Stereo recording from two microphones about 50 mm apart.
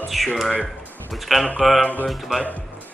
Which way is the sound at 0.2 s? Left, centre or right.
Centre.